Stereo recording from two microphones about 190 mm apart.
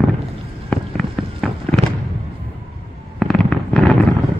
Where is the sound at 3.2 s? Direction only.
Centre (ahead or behind).